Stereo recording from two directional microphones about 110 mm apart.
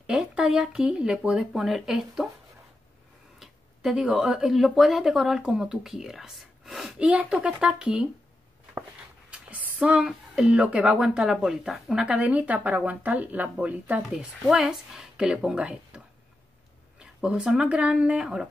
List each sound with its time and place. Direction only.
0.0 s speech: 5° right (ahead or behind)
3.3 s speech: 5° right (ahead or behind)
9.3 s speech: 10° right (ahead or behind)
17.0 s speech: 10° right (ahead or behind)